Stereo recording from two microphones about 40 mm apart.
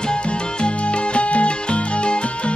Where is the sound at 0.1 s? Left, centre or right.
Left.